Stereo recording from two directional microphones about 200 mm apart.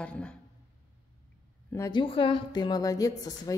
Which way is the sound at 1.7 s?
15° left (ahead or behind).